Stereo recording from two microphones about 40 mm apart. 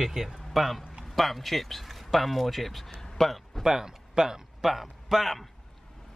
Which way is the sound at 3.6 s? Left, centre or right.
Centre.